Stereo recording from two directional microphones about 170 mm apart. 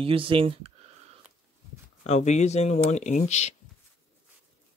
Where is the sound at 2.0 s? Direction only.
40° left (ahead or behind).